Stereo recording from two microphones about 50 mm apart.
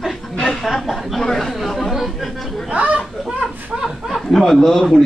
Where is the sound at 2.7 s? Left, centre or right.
Right.